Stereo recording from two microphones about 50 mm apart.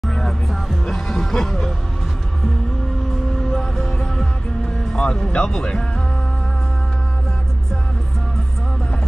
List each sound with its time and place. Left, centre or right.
0.0 s music: centre
3.3 s music: centre
4.9 s speech: centre